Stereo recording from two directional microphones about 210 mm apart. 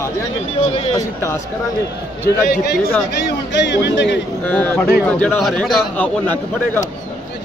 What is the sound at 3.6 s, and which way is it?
Speech, 55° left (ahead or behind).